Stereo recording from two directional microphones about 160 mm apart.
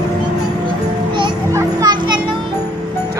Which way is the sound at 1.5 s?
25° right (ahead or behind).